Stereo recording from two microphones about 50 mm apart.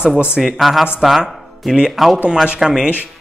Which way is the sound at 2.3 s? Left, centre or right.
Centre.